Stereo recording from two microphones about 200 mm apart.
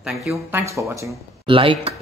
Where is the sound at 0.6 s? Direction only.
15° right (ahead or behind).